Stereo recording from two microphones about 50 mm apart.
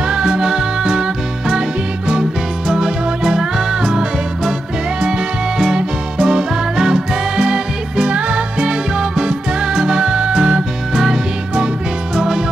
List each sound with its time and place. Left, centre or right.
0.1 s music: centre
2.7 s music: centre
5.6 s music: centre
12.2 s music: centre